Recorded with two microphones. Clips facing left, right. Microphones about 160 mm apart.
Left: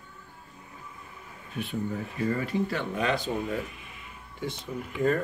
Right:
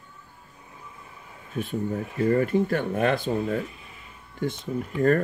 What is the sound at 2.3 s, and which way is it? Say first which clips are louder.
Speech: right 8 dB; 50° right (ahead or behind).